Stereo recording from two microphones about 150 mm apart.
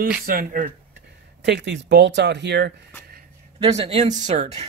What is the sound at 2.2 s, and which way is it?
Speech, 90° right.